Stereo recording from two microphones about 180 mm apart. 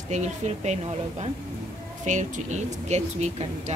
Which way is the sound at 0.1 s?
40° right (ahead or behind).